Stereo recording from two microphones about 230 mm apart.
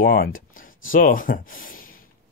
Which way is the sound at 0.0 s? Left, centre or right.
Left.